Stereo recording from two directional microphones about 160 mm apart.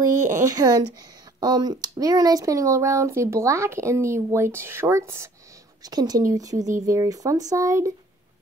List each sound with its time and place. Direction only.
0.5 s speech: 25° right (ahead or behind)